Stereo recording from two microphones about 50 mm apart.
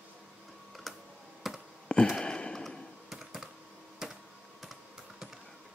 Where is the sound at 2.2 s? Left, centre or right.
Centre.